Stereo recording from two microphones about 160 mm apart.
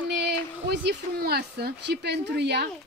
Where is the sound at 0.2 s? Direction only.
90° right.